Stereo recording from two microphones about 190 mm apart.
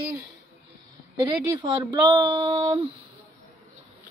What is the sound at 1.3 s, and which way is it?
Speech, 25° right (ahead or behind).